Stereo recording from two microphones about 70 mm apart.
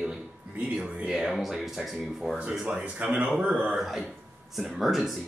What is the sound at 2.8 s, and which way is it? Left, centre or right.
Speech, centre.